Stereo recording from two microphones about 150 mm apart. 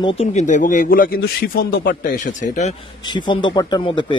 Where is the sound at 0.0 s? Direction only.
40° left (ahead or behind).